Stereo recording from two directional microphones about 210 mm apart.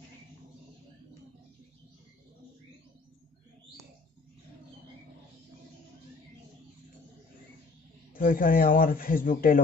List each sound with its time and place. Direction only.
8.1 s a man's voice: 40° left (ahead or behind)